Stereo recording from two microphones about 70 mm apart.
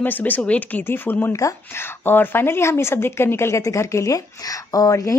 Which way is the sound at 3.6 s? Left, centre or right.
Left.